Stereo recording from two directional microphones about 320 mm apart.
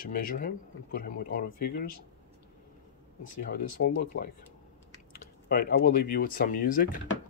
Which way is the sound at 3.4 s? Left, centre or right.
Left.